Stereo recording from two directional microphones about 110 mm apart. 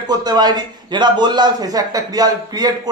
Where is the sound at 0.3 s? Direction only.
40° right (ahead or behind).